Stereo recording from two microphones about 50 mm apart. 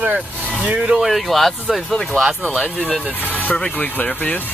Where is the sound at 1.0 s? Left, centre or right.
Centre.